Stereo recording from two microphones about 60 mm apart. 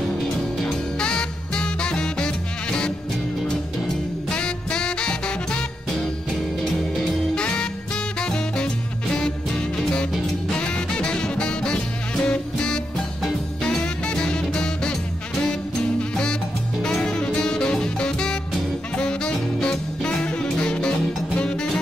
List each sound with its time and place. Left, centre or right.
0.7 s music: centre
4.3 s music: centre
7.3 s music: centre
10.5 s music: centre
16.0 s music: centre